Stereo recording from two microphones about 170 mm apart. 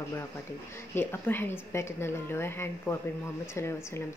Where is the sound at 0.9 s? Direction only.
15° left (ahead or behind).